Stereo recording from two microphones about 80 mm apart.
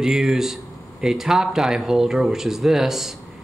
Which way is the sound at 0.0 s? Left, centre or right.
Centre.